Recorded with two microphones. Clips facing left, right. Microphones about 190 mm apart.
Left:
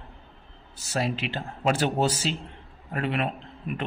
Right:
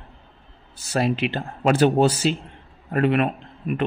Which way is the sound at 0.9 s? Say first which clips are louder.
Right 6 dB; 60° right (ahead or behind).